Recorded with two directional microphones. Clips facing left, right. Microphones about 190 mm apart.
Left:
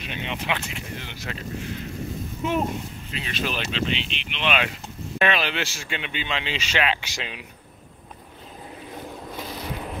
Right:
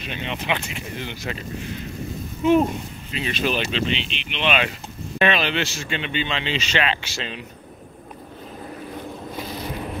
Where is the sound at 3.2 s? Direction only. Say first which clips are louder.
Right 6 dB; centre (ahead or behind).